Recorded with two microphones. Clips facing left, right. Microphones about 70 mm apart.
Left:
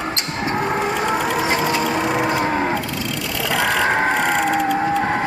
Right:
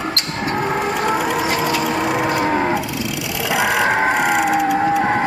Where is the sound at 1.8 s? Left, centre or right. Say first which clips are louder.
Right 1 dB; centre.